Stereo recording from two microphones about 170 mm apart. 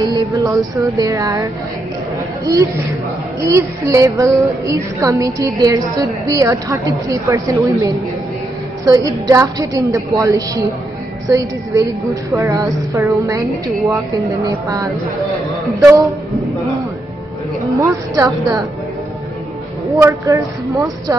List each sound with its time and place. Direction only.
0.0 s a woman's voice: 20° right (ahead or behind)
3.3 s a woman's voice: 15° right (ahead or behind)
17.6 s speech: 20° right (ahead or behind)
19.9 s speech: 20° right (ahead or behind)